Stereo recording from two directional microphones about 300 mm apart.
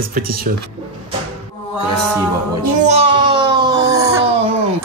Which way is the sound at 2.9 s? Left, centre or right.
Centre.